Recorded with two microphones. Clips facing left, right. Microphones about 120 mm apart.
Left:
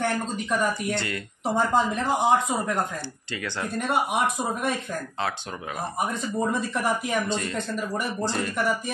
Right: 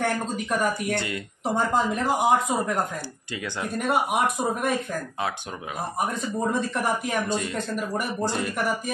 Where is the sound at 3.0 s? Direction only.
15° right (ahead or behind).